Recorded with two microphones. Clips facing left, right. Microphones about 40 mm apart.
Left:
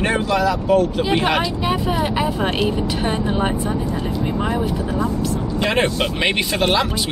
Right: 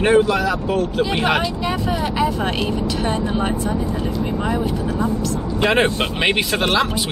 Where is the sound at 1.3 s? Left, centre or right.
Centre.